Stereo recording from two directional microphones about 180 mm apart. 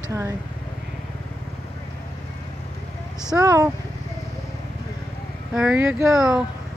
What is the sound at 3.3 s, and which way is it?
Speech, 15° right (ahead or behind).